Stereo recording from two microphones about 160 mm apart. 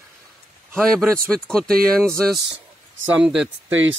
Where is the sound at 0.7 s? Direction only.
5° left (ahead or behind).